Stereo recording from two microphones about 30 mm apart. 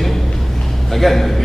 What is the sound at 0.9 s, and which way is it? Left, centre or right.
Speech, centre.